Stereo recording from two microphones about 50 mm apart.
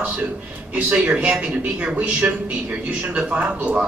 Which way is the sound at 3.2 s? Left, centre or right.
Right.